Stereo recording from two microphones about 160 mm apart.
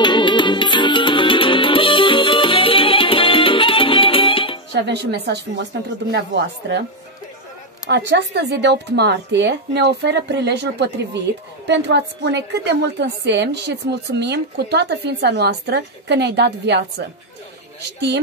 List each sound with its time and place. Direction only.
0.0 s music: 30° left (ahead or behind)
4.7 s speech: 90° right
7.9 s speech: 90° right